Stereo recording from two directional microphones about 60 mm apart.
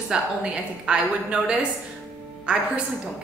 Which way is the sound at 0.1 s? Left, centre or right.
Centre.